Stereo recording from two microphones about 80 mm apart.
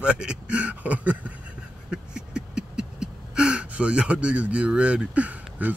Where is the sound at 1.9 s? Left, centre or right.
Centre.